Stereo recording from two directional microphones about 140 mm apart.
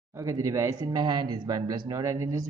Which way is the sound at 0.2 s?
20° right (ahead or behind).